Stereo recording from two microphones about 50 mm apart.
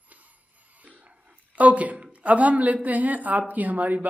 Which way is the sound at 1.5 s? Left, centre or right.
Right.